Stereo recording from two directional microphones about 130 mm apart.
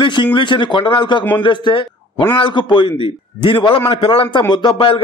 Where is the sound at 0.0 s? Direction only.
40° left (ahead or behind).